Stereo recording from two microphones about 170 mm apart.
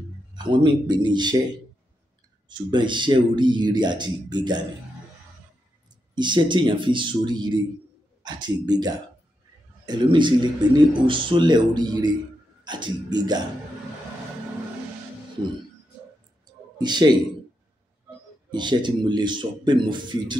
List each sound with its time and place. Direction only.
0.4 s speech: 30° right (ahead or behind)
2.4 s speech: 25° right (ahead or behind)
6.1 s speech: 25° right (ahead or behind)
16.4 s clicking: 25° right (ahead or behind)
18.5 s speech: 25° right (ahead or behind)